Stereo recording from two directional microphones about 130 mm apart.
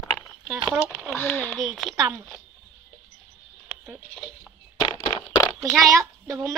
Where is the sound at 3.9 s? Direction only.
Centre (ahead or behind).